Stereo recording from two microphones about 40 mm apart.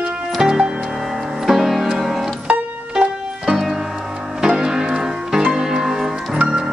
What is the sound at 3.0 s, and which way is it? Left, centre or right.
Music, centre.